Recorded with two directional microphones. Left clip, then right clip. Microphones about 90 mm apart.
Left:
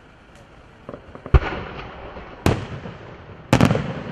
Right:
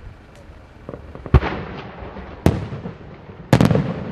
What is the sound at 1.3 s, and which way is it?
Fireworks, 25° left (ahead or behind).